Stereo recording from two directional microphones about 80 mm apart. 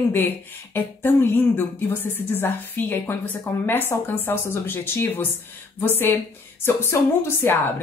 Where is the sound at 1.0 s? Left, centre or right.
Left.